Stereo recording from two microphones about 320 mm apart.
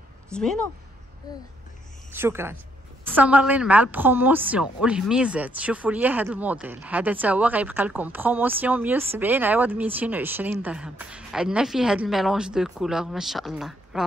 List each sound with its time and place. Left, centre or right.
0.3 s speech: centre
2.1 s a woman's voice: centre